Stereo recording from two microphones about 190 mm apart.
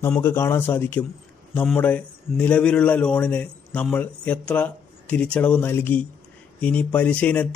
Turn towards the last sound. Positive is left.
turn(degrees=5)  # may be behind; listen again after turning